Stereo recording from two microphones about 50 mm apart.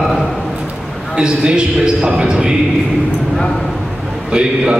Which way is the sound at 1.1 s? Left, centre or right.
Centre.